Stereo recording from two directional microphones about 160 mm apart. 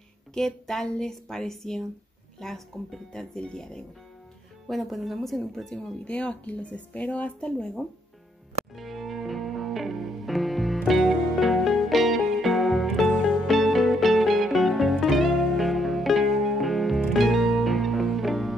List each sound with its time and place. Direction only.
0.3 s speech: 5° left (ahead or behind)
8.7 s music: centre (ahead or behind)